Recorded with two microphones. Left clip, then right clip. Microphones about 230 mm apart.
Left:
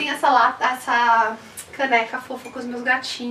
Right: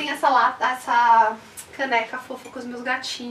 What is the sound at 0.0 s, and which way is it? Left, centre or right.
A woman's voice, centre.